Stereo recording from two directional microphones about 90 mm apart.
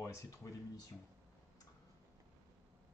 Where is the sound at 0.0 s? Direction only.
35° left (ahead or behind).